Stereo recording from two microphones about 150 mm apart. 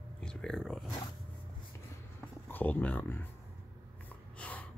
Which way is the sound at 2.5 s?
10° left (ahead or behind).